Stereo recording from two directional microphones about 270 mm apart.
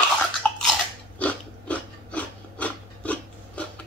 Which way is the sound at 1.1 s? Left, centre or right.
Centre.